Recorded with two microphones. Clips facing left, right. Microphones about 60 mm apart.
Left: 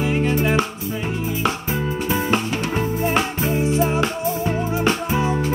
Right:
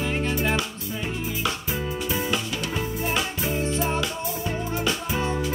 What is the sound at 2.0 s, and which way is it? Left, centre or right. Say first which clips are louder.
Music: left 7 dB; left.